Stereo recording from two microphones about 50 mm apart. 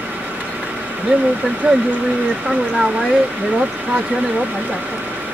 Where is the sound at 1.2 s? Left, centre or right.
Right.